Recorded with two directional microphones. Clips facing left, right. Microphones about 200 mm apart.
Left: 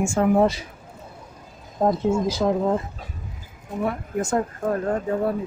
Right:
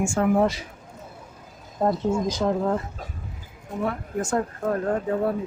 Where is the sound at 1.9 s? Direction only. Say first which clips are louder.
Left 2 dB; 10° left (ahead or behind).